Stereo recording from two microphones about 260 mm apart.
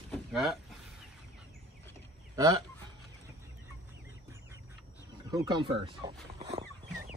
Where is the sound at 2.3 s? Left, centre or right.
Centre.